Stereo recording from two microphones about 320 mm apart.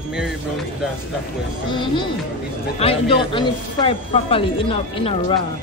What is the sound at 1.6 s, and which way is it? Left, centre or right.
Speech, centre.